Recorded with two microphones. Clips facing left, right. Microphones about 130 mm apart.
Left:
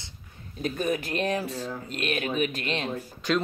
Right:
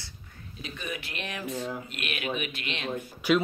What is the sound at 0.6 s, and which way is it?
Speech, 45° left (ahead or behind).